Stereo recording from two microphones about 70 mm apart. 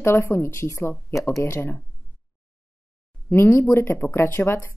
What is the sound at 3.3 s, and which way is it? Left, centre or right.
Speech, left.